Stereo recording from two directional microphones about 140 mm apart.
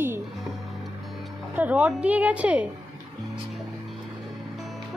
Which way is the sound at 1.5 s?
10° right (ahead or behind).